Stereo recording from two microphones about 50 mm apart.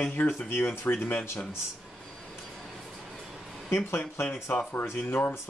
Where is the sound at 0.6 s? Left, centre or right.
Left.